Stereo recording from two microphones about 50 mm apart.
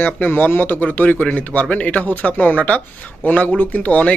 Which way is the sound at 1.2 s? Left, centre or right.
Left.